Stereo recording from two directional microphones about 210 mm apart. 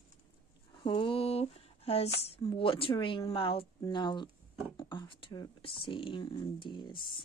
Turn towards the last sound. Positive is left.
turn(degrees=20)  # may be behind; listen again after turning